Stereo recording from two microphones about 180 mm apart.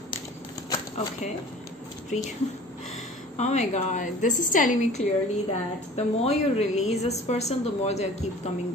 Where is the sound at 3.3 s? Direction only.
40° left (ahead or behind).